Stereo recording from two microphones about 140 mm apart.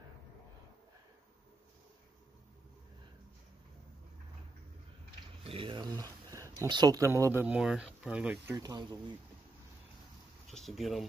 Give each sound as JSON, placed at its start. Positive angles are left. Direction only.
{"t": 5.5, "sound": "a sound", "side_deg": -40}
{"t": 6.7, "sound": "speech", "side_deg": -30}
{"t": 8.5, "sound": "speech", "side_deg": -30}
{"t": 10.5, "sound": "speech", "side_deg": 0}